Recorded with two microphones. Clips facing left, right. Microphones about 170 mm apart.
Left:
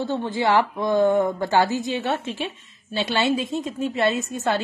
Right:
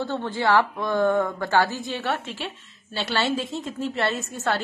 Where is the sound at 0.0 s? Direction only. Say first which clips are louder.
Left 2 dB; 15° left (ahead or behind).